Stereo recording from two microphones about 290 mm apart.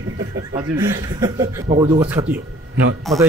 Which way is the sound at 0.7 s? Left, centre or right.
Centre.